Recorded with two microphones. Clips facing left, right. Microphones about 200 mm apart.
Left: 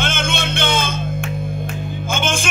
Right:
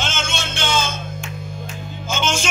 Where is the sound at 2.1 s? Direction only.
55° left (ahead or behind).